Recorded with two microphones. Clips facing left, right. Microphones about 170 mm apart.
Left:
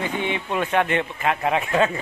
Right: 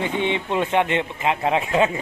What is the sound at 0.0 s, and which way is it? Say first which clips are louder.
A man's voice: right 3 dB; 25° right (ahead or behind).